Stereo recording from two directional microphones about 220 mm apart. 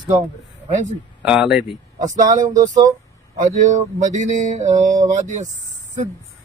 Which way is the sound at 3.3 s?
35° right (ahead or behind).